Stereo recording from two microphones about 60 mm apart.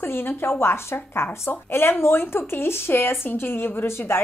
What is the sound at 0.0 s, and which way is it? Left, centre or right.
Speech, left.